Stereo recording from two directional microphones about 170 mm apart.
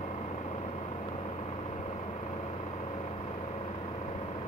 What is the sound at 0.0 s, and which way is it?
Vehicle, 40° left (ahead or behind).